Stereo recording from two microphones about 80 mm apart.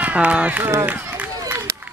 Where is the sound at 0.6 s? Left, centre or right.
Right.